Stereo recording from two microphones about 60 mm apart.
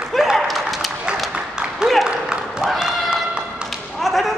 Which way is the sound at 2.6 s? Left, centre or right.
Centre.